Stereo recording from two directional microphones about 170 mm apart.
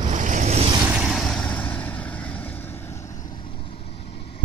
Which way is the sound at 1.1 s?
5° left (ahead or behind).